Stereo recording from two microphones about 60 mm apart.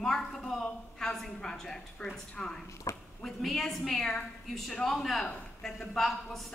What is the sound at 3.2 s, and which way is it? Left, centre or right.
A woman's voice, centre.